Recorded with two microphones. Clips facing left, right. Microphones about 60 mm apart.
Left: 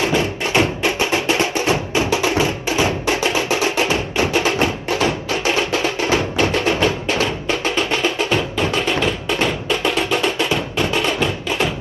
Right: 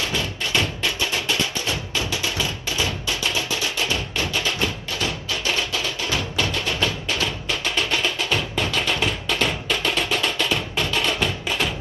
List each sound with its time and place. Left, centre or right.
0.0 s music: left